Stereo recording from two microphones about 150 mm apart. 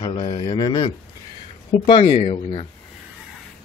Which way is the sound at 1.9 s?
40° left (ahead or behind).